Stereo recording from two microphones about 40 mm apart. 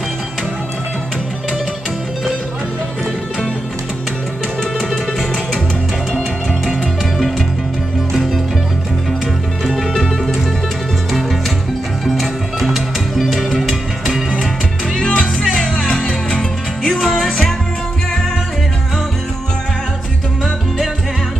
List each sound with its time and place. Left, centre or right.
6.7 s music: centre
9.9 s music: centre
12.2 s music: centre
15.0 s music: centre